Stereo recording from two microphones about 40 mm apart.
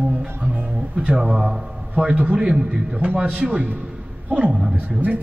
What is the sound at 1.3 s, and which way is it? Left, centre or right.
A man's voice, centre.